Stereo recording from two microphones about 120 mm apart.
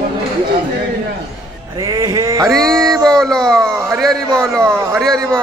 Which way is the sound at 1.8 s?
30° right (ahead or behind).